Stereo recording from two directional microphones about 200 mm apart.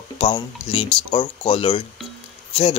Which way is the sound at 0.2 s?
25° left (ahead or behind).